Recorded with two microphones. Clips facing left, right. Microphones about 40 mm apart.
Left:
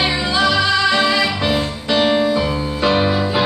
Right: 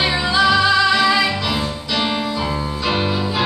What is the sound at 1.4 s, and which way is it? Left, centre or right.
Music, left.